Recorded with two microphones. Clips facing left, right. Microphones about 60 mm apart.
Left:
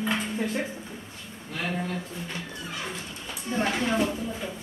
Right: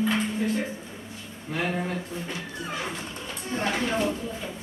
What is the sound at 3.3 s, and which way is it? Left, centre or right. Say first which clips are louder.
Speech: left 1 dB; centre.